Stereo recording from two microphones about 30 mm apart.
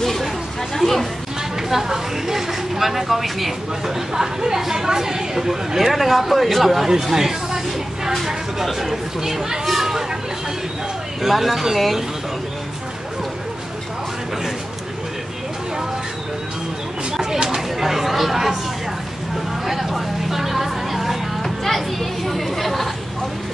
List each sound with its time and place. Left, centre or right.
0.7 s speech: centre
1.7 s speech: centre
3.8 s a woman's voice: centre
5.8 s a man's voice: centre
7.0 s a sound: centre
8.7 s speech: centre
11.2 s a man's voice: centre
17.2 s a sound: right
17.6 s speech: centre
19.6 s vehicle: centre
21.4 s speech: centre